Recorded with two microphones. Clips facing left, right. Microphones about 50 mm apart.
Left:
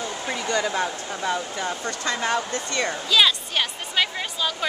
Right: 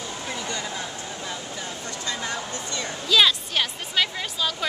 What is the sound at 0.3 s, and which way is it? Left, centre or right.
Speech, left.